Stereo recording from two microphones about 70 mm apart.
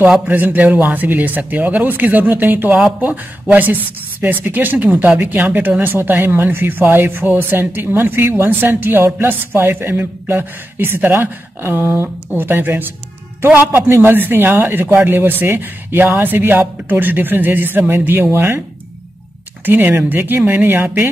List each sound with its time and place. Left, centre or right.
0.2 s speech: right
19.6 s speech: right